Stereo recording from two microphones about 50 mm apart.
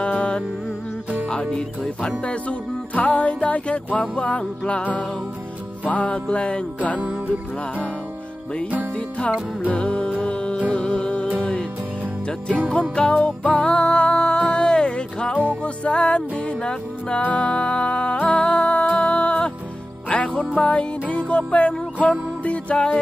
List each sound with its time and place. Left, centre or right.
0.0 s music: left
2.4 s music: left
7.0 s music: right
9.7 s music: left
22.0 s music: centre
22.4 s music: left